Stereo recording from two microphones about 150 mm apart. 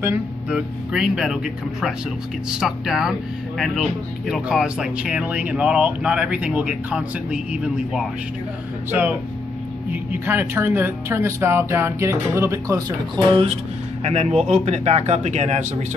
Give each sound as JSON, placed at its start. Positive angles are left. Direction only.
{"t": 0.5, "sound": "speech", "side_deg": -5}
{"t": 10.2, "sound": "speech", "side_deg": -15}
{"t": 14.0, "sound": "speech", "side_deg": -45}